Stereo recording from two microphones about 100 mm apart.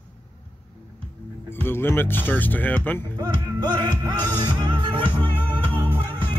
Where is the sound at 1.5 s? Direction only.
20° left (ahead or behind).